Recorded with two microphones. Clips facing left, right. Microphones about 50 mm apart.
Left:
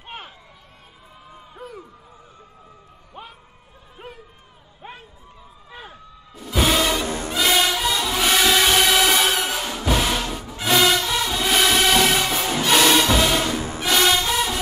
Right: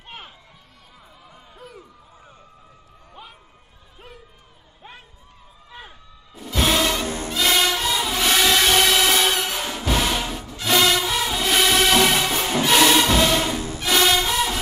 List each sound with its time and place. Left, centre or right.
3.2 s a sound: left
4.0 s a sound: centre
4.8 s a sound: centre
5.7 s music: centre
7.1 s music: left
7.3 s train: centre
10.6 s music: centre
13.6 s music: left
13.8 s music: centre